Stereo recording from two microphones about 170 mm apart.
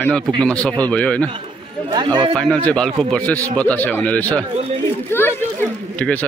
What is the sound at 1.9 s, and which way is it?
Speech, 25° right (ahead or behind).